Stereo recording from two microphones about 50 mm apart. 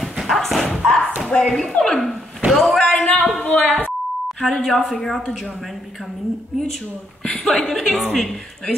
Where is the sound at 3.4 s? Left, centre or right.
Left.